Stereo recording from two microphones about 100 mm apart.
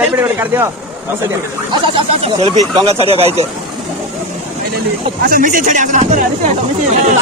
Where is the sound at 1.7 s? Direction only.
65° right (ahead or behind).